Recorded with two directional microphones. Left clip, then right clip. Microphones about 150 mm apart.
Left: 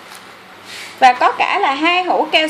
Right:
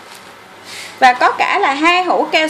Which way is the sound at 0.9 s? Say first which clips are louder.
Even; 10° right (ahead or behind).